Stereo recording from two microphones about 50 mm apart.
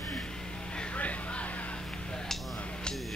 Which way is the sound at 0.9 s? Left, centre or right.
Left.